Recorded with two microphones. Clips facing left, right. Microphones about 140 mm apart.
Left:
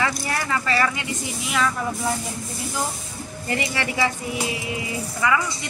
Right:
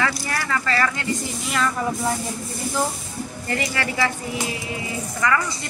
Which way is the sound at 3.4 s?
20° left (ahead or behind).